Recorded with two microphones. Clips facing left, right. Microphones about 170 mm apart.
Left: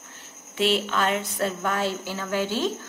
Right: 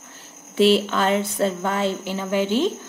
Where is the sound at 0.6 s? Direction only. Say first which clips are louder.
Right 6 dB; 35° right (ahead or behind).